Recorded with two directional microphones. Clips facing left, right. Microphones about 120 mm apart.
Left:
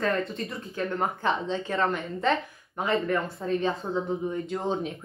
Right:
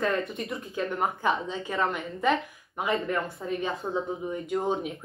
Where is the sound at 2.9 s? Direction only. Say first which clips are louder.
Left 4 dB; 10° right (ahead or behind).